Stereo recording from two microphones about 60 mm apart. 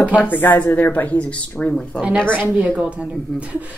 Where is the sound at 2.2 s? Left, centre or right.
Right.